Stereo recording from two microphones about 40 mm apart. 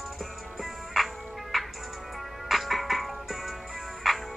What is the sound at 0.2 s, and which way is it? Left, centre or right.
Music, centre.